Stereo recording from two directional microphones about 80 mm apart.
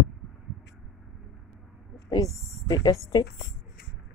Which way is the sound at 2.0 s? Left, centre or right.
Left.